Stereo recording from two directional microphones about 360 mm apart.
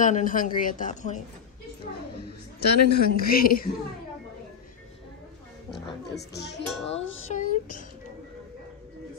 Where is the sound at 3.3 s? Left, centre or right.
Left.